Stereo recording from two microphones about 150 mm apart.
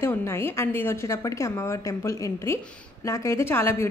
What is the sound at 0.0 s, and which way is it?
A woman's voice, 15° left (ahead or behind).